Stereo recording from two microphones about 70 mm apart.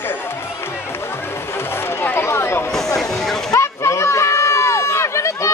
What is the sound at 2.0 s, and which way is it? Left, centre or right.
Chatter, left.